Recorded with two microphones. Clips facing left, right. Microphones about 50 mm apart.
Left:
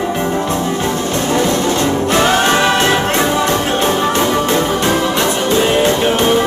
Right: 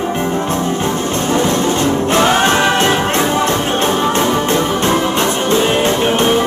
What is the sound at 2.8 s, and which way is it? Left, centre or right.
Music, centre.